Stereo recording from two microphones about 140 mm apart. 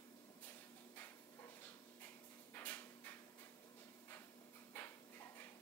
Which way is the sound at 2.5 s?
15° left (ahead or behind).